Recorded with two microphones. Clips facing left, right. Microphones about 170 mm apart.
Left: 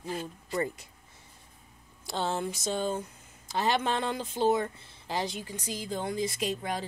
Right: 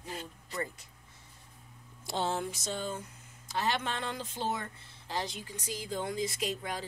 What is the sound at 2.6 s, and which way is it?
Speech, 25° left (ahead or behind).